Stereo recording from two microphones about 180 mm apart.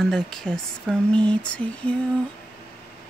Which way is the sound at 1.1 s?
5° left (ahead or behind).